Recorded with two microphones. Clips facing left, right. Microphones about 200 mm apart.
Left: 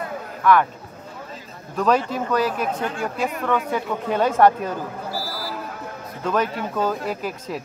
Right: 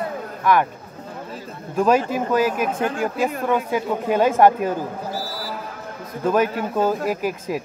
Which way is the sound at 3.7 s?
10° right (ahead or behind).